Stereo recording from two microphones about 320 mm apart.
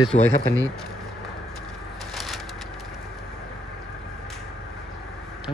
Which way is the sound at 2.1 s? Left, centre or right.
Centre.